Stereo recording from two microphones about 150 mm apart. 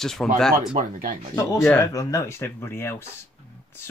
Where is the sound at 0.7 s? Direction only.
60° right (ahead or behind).